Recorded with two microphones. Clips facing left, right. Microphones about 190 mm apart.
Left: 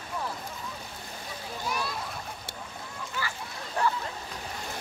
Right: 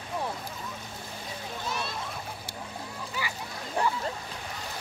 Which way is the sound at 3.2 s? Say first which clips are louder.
Even; 15° right (ahead or behind).